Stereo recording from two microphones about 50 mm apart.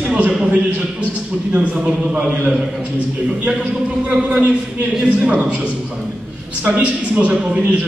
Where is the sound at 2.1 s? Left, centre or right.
Right.